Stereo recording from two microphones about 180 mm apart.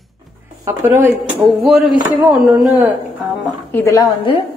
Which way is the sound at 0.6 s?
15° right (ahead or behind).